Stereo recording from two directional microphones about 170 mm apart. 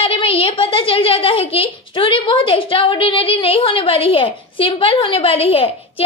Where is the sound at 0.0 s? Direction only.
35° left (ahead or behind).